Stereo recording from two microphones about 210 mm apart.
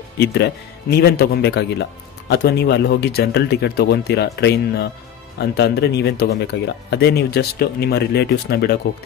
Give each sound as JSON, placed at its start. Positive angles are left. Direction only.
{"t": 0.2, "sound": "speech", "side_deg": 50}